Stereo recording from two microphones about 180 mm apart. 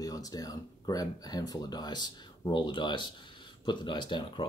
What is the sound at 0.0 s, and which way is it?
Speech, 20° left (ahead or behind).